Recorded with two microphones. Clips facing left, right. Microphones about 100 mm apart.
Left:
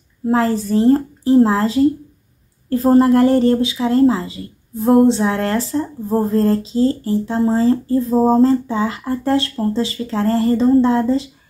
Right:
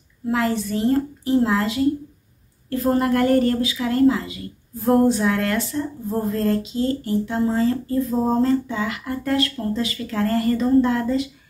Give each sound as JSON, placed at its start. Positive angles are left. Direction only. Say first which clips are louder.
{"t": 0.3, "sound": "speech", "louder": "left 5 dB", "side_deg": 35}